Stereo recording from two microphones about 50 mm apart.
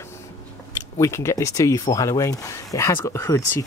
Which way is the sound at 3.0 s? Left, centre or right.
Left.